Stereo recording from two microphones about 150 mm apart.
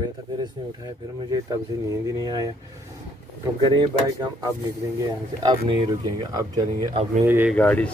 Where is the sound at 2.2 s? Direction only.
25° right (ahead or behind).